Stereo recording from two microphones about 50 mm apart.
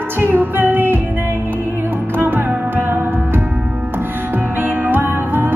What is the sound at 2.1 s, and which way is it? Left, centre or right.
Music, right.